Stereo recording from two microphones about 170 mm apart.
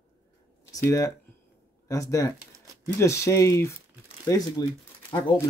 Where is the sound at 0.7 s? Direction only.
20° left (ahead or behind).